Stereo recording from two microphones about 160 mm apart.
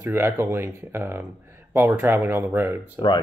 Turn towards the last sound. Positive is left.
turn(degrees=30)  # may be behind; listen again after turning